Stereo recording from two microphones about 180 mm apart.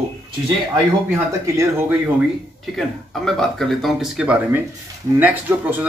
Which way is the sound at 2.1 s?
Centre (ahead or behind).